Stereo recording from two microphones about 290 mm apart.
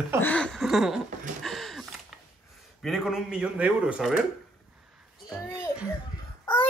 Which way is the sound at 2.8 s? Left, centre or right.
Centre.